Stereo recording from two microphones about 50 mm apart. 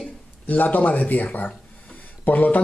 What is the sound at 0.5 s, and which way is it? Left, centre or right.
Speech, left.